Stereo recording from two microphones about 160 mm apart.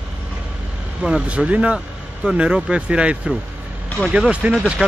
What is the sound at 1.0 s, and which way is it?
Speech, 5° right (ahead or behind).